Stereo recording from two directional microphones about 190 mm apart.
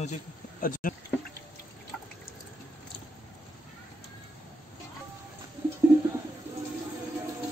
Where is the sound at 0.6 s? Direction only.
45° left (ahead or behind).